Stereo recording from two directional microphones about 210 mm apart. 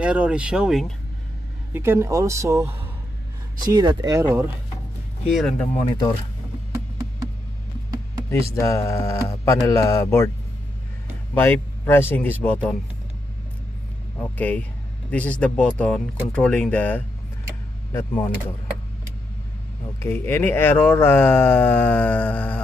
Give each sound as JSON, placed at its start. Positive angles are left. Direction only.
{"t": 0.0, "sound": "speech", "side_deg": -5}
{"t": 3.7, "sound": "speech", "side_deg": -20}
{"t": 5.3, "sound": "speech", "side_deg": 0}
{"t": 5.9, "sound": "speech", "side_deg": 20}
{"t": 8.5, "sound": "speech", "side_deg": 15}
{"t": 11.3, "sound": "speech", "side_deg": 10}
{"t": 14.4, "sound": "speech", "side_deg": 5}
{"t": 20.0, "sound": "speech", "side_deg": 10}